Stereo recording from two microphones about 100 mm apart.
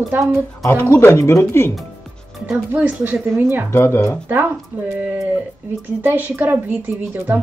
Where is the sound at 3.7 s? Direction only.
25° left (ahead or behind).